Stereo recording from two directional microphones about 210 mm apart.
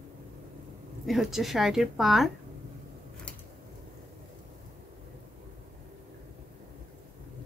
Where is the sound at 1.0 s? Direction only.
Centre (ahead or behind).